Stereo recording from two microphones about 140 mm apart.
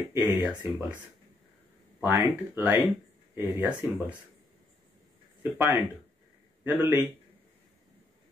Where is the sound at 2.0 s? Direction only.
20° right (ahead or behind).